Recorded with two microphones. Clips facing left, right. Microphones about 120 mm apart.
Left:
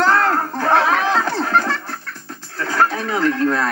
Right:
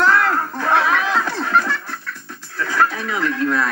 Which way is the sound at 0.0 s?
35° left (ahead or behind).